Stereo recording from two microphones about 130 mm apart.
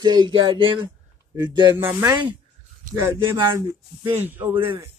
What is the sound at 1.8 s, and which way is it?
Speech, 20° right (ahead or behind).